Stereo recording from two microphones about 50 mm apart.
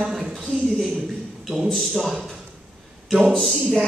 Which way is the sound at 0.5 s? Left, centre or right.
Centre.